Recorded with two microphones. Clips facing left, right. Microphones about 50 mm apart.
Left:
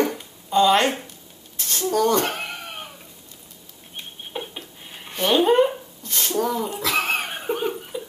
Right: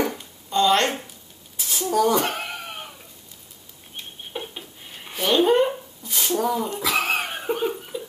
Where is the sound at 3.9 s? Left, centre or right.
Centre.